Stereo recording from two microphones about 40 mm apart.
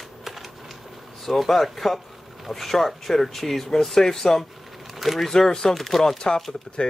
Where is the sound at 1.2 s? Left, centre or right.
Centre.